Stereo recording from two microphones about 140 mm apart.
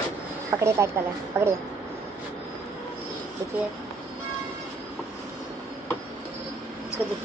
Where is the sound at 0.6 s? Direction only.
20° right (ahead or behind).